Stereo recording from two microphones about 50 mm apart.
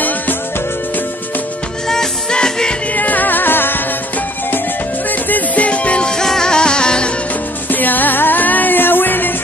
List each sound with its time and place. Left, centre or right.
1.9 s music: centre
3.0 s music: left
5.3 s music: left
7.7 s music: left